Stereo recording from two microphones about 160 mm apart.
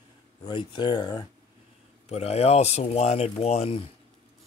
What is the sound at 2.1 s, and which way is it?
Speech, 40° left (ahead or behind).